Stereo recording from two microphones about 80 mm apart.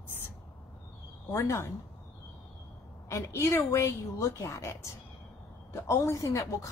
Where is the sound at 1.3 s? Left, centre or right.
Left.